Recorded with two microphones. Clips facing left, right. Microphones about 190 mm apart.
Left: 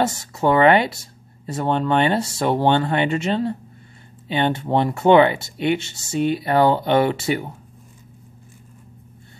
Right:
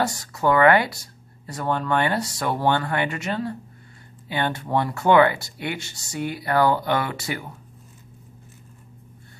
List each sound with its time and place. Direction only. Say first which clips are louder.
0.0 s speech: left 3 dB; 25° left (ahead or behind)